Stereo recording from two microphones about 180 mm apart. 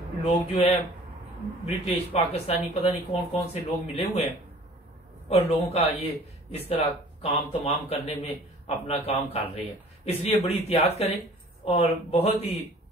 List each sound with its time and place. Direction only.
0.2 s speech: 35° left (ahead or behind)
1.9 s speech: 35° left (ahead or behind)
5.3 s speech: 35° left (ahead or behind)